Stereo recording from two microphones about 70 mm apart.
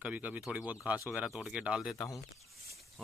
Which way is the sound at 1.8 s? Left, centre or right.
Centre.